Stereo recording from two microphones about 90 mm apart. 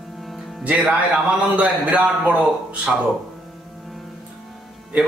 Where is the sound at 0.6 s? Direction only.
15° right (ahead or behind).